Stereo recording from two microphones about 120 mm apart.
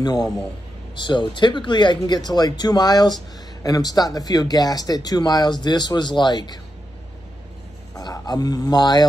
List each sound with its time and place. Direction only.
0.0 s speech: 35° left (ahead or behind)
7.9 s speech: 30° left (ahead or behind)